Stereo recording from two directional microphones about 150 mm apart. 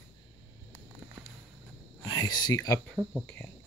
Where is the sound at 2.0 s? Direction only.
25° left (ahead or behind).